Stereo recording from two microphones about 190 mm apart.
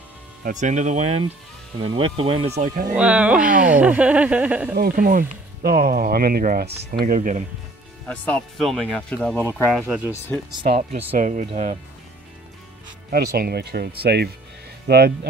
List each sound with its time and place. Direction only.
0.4 s speech: 40° right (ahead or behind)
2.9 s speech: 5° right (ahead or behind)
4.7 s speech: 50° right (ahead or behind)
8.1 s speech: 5° left (ahead or behind)
9.7 s speech: 5° right (ahead or behind)
10.1 s speech: 10° left (ahead or behind)
10.5 s speech: 30° right (ahead or behind)
13.1 s speech: 55° right (ahead or behind)